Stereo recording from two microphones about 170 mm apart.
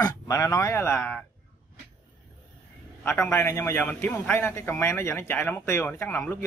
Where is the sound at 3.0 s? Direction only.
15° left (ahead or behind).